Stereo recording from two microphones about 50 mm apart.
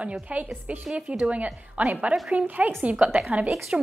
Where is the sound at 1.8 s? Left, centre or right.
Centre.